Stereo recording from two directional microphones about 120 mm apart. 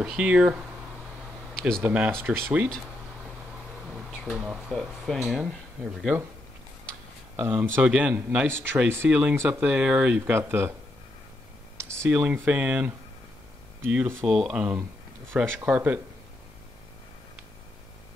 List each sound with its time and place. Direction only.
0.0 s speech: 5° right (ahead or behind)
1.5 s a sound: 5° left (ahead or behind)
1.8 s speech: 10° right (ahead or behind)
4.2 s speech: 5° right (ahead or behind)
7.3 s speech: 20° right (ahead or behind)
11.7 s a sound: 20° right (ahead or behind)
12.1 s speech: 10° right (ahead or behind)